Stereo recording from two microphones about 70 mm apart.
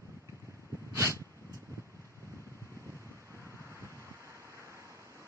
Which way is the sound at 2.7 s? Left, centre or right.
Right.